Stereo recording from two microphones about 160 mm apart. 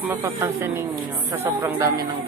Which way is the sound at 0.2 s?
15° right (ahead or behind).